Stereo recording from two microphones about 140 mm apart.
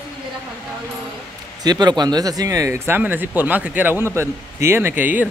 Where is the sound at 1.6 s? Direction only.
30° right (ahead or behind).